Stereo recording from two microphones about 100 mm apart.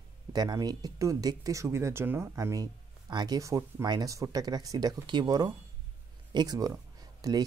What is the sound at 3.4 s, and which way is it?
Speech, 30° right (ahead or behind).